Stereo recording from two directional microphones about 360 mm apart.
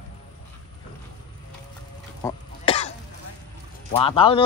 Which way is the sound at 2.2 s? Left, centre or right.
Centre.